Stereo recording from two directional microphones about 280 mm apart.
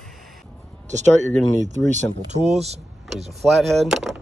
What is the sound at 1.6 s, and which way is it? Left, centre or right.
Speech, right.